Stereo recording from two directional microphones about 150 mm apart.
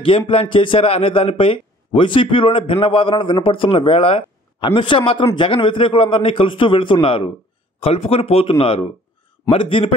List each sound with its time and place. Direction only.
0.3 s a man's voice: 40° left (ahead or behind)